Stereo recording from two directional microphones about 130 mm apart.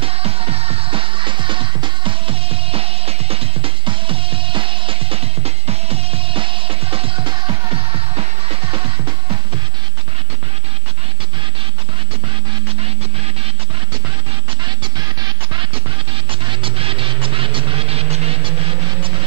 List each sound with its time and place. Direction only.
0.0 s music: 50° right (ahead or behind)
16.3 s music: 45° right (ahead or behind)